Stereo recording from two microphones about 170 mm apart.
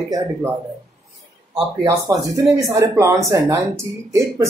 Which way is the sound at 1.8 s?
20° right (ahead or behind).